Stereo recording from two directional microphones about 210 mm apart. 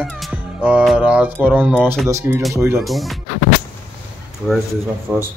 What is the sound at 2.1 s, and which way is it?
Speech, 15° right (ahead or behind).